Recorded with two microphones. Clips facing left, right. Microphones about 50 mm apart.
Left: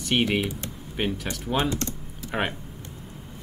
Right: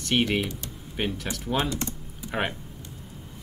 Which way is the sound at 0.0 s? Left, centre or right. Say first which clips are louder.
Left 1 dB; centre.